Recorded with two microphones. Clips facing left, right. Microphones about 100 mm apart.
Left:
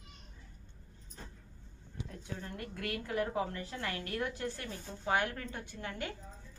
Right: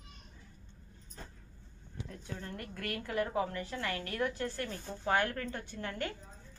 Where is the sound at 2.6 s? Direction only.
20° left (ahead or behind).